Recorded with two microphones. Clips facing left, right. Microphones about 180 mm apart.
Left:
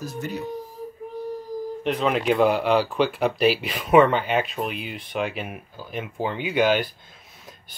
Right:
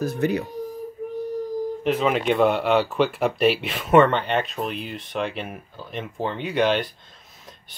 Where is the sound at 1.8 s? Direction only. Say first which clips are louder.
Even; centre (ahead or behind).